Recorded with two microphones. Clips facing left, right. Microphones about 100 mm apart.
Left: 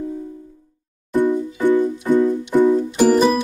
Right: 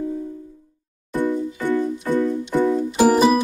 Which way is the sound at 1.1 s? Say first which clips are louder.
Left 4 dB; 20° left (ahead or behind).